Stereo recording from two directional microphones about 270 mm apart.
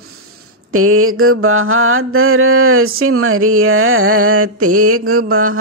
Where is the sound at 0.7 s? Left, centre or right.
Right.